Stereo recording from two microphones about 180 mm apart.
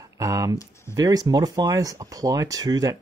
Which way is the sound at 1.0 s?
20° right (ahead or behind).